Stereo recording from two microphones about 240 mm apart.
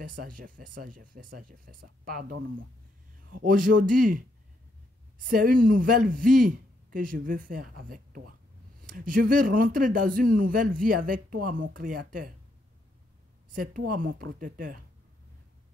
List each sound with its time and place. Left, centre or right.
0.2 s speech: right
3.4 s speech: right
5.3 s speech: right
13.6 s speech: right